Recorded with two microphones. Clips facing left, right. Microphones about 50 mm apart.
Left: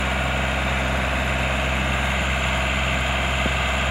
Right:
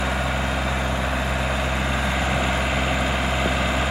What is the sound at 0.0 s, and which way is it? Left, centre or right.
Vehicle, left.